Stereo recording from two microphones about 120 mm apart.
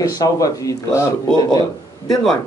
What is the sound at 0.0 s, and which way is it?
A man's voice, 30° left (ahead or behind).